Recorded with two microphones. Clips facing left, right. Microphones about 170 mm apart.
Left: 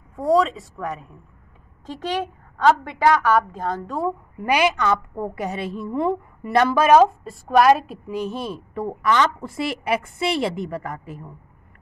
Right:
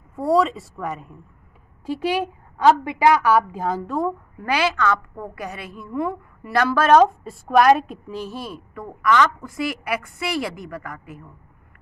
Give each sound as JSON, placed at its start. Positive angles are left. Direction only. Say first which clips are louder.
{"t": 0.1, "sound": "a woman's voice", "louder": "even", "side_deg": 0}
{"t": 2.5, "sound": "a woman's voice", "louder": "right 1 dB", "side_deg": -15}
{"t": 4.4, "sound": "a woman's voice", "louder": "left 2 dB", "side_deg": 15}
{"t": 6.9, "sound": "a woman's voice", "louder": "right 2 dB", "side_deg": 0}
{"t": 8.1, "sound": "a woman's voice", "louder": "left 6 dB", "side_deg": 20}